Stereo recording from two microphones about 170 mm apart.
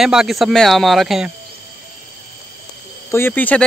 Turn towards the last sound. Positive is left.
turn(degrees=10)  # may be behind; listen again after turning